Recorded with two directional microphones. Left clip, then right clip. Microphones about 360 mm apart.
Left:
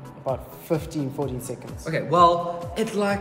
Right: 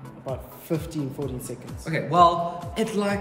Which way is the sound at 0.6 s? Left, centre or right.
Centre.